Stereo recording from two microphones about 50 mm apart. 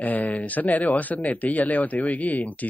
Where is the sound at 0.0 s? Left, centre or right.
Left.